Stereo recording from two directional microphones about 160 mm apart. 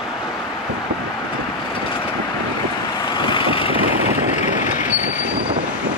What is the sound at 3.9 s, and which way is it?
Vehicle, 10° right (ahead or behind).